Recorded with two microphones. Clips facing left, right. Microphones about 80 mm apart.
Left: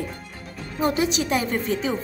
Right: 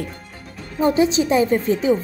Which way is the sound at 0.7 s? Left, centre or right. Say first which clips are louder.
Right 6 dB; right.